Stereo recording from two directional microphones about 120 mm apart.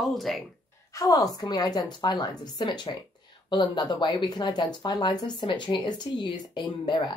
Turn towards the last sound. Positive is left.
turn(degrees=40)  # may be behind; listen again after turning